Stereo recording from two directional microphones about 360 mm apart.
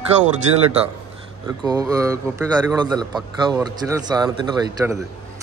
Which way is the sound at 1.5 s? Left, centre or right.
Centre.